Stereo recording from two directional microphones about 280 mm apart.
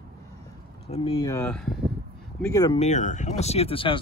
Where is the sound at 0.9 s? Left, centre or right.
Centre.